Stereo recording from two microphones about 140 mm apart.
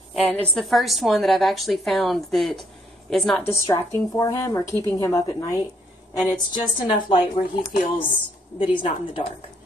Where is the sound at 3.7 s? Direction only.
20° left (ahead or behind).